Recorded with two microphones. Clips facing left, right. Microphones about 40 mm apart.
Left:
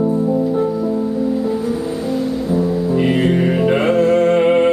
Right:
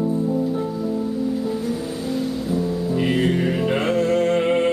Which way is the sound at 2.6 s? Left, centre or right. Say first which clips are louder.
Left 6 dB; centre.